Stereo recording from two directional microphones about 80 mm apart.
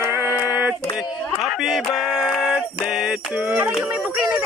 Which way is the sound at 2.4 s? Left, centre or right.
Centre.